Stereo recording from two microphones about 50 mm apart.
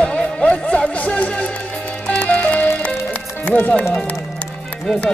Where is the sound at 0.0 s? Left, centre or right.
Left.